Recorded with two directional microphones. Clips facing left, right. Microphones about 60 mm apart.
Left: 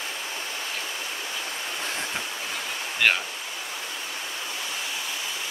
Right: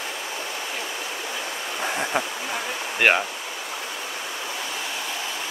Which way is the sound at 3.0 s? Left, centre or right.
Right.